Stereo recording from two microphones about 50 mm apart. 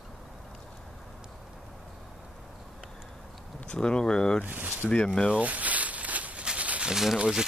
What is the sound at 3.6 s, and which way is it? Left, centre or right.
Speech, centre.